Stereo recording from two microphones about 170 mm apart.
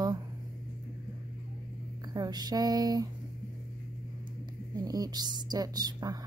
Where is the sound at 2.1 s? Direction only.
25° right (ahead or behind).